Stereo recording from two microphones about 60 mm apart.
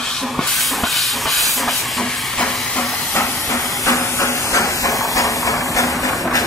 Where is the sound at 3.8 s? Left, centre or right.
Left.